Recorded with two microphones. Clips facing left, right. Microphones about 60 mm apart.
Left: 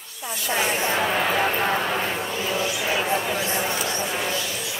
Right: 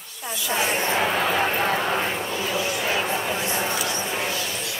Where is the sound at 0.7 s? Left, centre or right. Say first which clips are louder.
Even; right.